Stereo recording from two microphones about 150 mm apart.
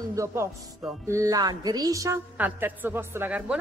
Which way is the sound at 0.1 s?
20° right (ahead or behind).